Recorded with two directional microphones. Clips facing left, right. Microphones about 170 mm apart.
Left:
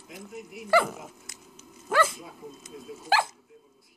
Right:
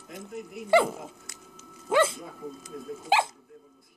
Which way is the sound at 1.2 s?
20° left (ahead or behind).